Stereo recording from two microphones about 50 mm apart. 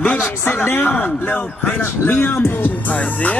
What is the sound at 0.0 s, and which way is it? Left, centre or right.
Music, left.